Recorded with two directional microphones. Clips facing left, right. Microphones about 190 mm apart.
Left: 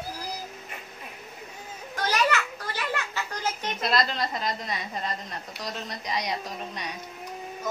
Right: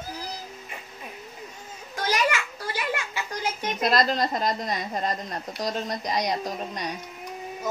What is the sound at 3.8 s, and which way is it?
A woman's voice, 45° right (ahead or behind).